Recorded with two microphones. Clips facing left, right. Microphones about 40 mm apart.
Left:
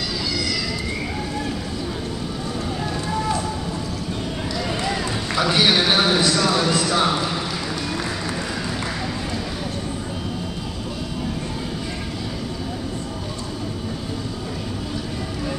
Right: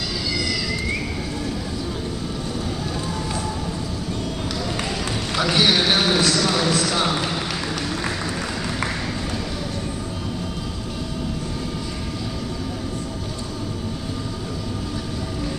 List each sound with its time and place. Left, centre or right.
5.4 s a man's voice: centre
6.7 s basketball bounce: centre